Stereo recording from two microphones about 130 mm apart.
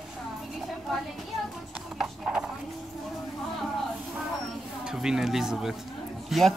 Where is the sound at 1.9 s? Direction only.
5° right (ahead or behind).